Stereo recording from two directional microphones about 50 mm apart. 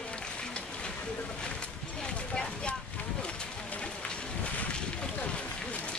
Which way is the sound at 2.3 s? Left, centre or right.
Centre.